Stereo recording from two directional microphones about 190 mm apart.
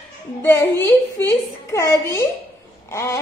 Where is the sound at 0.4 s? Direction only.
15° left (ahead or behind).